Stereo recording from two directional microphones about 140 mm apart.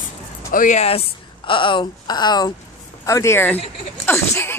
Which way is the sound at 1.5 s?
35° left (ahead or behind).